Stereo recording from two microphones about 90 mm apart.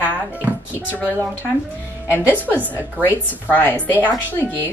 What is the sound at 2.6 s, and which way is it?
A woman's voice, 20° left (ahead or behind).